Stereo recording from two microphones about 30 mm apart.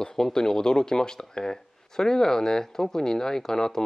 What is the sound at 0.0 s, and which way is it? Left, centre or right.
Speech, left.